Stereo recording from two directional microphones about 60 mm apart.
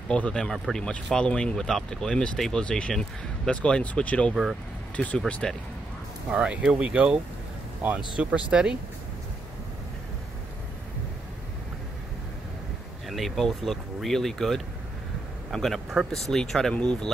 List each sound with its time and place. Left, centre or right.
0.1 s speech: centre
4.3 s speech: centre
4.9 s speech: centre
5.4 s speech: centre
6.3 s speech: centre
13.1 s speech: centre